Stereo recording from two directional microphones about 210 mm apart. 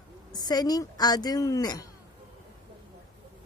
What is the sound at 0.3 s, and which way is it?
Speech, 20° left (ahead or behind).